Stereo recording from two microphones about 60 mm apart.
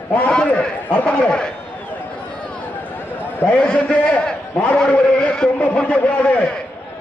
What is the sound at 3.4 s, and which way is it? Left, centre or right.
A man's voice, left.